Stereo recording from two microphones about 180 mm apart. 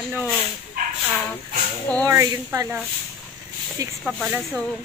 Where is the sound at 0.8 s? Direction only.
50° right (ahead or behind).